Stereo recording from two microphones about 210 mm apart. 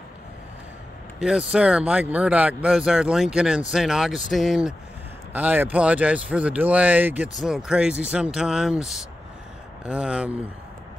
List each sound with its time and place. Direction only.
1.2 s speech: 5° right (ahead or behind)